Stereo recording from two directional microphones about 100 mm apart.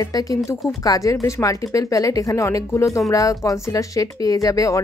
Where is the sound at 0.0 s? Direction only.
35° left (ahead or behind).